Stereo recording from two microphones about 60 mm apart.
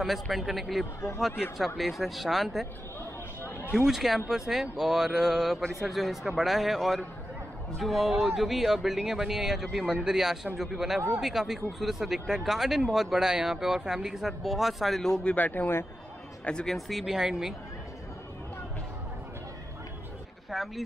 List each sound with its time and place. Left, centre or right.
0.0 s speech: centre
3.7 s speech: centre
15.2 s speech: left
16.6 s speech: centre
20.5 s speech: centre